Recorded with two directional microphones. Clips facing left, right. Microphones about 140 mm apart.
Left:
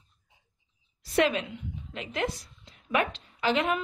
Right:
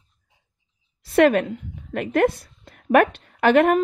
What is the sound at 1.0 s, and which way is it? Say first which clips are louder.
A woman's voice: right 9 dB; 55° right (ahead or behind).